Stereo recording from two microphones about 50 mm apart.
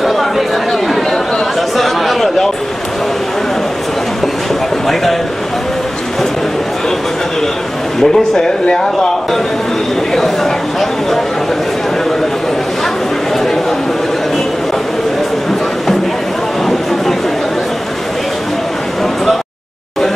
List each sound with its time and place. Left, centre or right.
0.0 s chatter: centre
1.8 s chatter: centre
8.0 s speech: centre
10.1 s speech: centre